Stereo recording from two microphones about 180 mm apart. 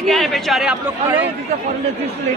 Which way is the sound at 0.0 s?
Centre (ahead or behind).